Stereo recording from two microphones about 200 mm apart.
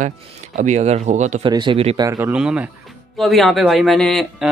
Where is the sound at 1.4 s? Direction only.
25° right (ahead or behind).